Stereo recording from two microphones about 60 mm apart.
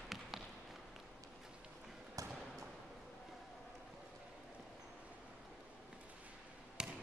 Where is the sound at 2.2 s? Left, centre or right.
Right.